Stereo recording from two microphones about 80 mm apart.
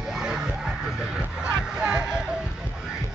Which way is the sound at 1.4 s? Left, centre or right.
Centre.